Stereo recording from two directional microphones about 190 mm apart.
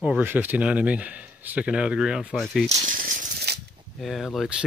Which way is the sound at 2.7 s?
45° right (ahead or behind).